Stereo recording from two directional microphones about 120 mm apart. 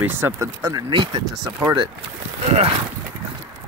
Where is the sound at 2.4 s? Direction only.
60° right (ahead or behind).